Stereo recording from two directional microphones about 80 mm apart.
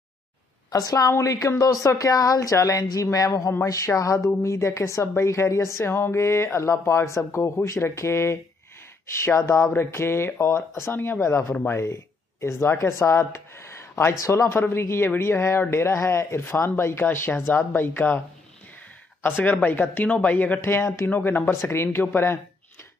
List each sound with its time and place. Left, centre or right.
0.7 s a woman's voice: left
9.7 s a woman's voice: left
11.1 s a woman's voice: left
19.2 s a woman's voice: left